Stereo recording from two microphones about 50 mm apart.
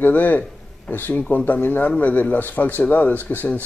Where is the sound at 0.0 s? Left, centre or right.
Left.